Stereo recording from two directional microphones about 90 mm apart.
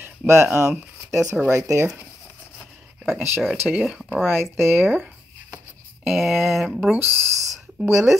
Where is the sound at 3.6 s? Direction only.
10° right (ahead or behind).